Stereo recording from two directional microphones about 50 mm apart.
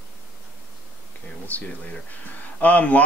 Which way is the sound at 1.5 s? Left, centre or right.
Left.